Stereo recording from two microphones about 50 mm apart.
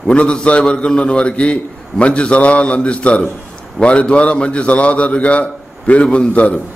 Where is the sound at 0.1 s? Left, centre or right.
Left.